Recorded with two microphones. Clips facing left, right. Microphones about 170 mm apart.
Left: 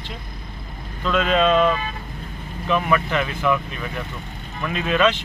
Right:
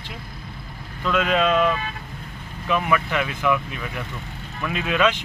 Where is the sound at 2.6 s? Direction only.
10° right (ahead or behind).